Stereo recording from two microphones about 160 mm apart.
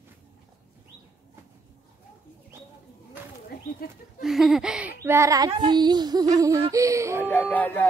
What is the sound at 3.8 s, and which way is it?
Speech, 75° left (ahead or behind).